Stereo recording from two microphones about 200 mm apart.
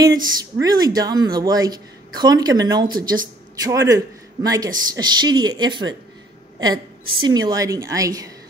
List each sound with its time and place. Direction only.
0.0 s a man's voice: 20° right (ahead or behind)
7.2 s a man's voice: 20° right (ahead or behind)